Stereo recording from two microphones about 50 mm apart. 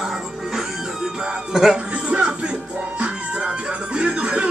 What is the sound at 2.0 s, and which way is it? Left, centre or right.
Music, right.